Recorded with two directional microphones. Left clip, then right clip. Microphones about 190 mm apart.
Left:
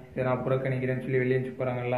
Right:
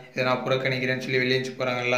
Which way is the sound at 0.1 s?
20° right (ahead or behind).